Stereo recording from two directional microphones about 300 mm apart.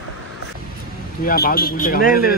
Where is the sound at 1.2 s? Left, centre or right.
Left.